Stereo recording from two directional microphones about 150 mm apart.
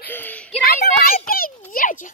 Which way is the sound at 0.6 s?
85° left.